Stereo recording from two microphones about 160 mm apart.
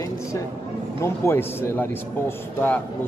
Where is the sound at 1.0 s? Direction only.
15° left (ahead or behind).